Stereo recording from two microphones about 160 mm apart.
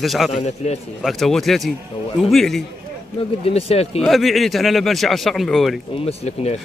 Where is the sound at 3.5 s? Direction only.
40° left (ahead or behind).